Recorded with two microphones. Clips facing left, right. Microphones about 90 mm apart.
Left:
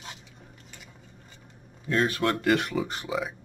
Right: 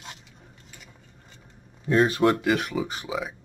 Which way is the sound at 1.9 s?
20° right (ahead or behind).